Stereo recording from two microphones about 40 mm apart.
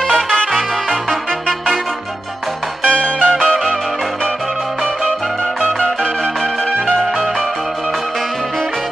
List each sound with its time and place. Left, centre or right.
0.1 s music: centre
2.8 s music: left